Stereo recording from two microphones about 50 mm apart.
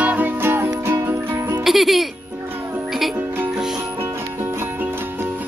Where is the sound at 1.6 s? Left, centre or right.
Centre.